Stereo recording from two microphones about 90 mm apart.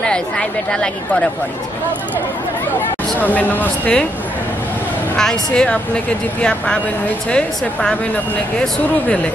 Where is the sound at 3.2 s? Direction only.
20° left (ahead or behind).